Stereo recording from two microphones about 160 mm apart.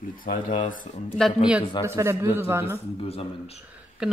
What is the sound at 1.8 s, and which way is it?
Speech, 15° right (ahead or behind).